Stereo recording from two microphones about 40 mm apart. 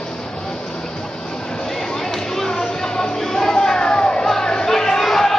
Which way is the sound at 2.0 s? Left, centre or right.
Centre.